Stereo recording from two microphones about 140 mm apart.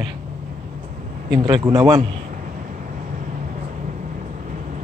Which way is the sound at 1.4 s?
30° right (ahead or behind).